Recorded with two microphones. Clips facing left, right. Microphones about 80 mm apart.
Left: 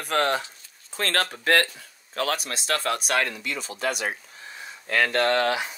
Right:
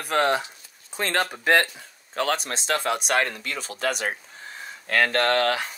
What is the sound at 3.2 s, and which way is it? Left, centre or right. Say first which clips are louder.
Speech: even; right.